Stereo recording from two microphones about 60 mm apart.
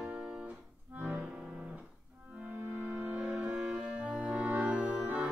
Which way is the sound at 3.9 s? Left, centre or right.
Right.